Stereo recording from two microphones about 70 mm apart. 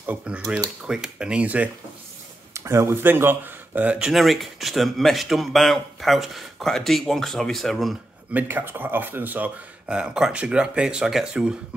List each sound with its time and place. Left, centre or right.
0.0 s speech: centre
2.5 s speech: right; by 4.1 s centre
4.1 s a man's voice: centre
8.3 s speech: right
9.8 s speech: centre